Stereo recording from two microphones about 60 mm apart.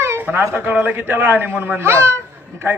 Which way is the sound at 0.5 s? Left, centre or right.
Right.